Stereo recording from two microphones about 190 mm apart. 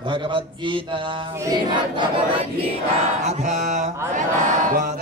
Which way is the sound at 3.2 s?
35° right (ahead or behind).